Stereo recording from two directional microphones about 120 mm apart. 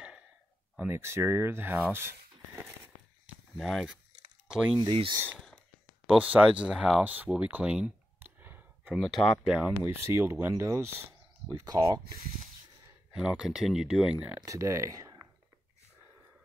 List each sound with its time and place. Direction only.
0.7 s speech: 20° right (ahead or behind)
1.9 s a sound: 20° right (ahead or behind)
3.5 s speech: centre (ahead or behind)
5.2 s speech: 5° left (ahead or behind)
6.0 s speech: 10° right (ahead or behind)
9.0 s speech: centre (ahead or behind)
9.6 s speech: 10° right (ahead or behind)
11.5 s speech: 30° right (ahead or behind)
13.1 s speech: 5° right (ahead or behind)
14.4 s speech: 25° right (ahead or behind)